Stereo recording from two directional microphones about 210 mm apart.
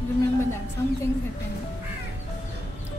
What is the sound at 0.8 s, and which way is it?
Speech, 15° left (ahead or behind).